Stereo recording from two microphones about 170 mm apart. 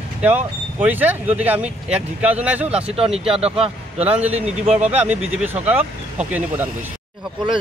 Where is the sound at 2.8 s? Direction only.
35° right (ahead or behind).